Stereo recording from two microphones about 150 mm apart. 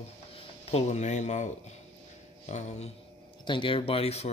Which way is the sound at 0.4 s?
40° left (ahead or behind).